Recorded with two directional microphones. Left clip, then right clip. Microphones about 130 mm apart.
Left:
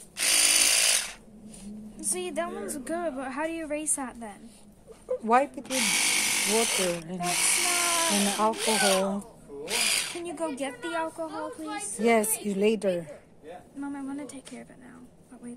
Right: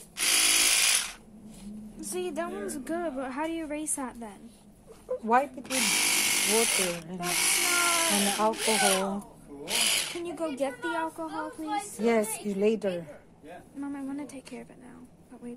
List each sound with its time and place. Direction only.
0.2 s electric toothbrush: centre (ahead or behind)
2.0 s a woman's voice: 15° left (ahead or behind)
5.0 s speech: 40° left (ahead or behind)
5.6 s speech: 10° right (ahead or behind)
7.2 s drill: 10° right (ahead or behind)
8.5 s speech: 10° right (ahead or behind)
9.7 s gasp: 10° right (ahead or behind)
10.2 s a woman's voice: 5° left (ahead or behind)
11.2 s a woman's voice: centre (ahead or behind)
12.0 s a woman's voice: 35° left (ahead or behind)
13.7 s a woman's voice: centre (ahead or behind)